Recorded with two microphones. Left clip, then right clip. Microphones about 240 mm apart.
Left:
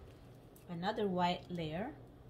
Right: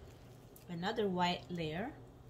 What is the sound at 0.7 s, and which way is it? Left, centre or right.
A woman's voice, centre.